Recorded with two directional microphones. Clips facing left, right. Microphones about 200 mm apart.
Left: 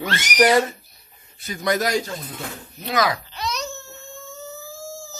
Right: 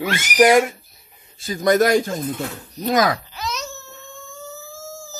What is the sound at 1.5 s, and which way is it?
A man's voice, 45° right (ahead or behind).